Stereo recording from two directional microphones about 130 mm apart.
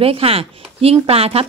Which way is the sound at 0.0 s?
45° right (ahead or behind).